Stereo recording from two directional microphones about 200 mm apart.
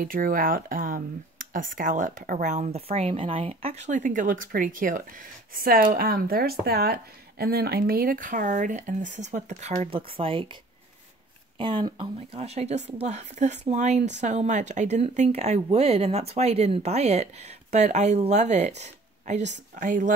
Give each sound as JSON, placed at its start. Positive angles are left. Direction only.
{"t": 0.0, "sound": "speech", "side_deg": -45}